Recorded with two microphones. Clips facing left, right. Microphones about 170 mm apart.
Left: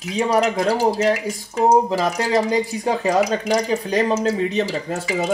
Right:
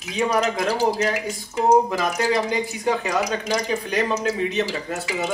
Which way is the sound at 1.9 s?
30° left (ahead or behind).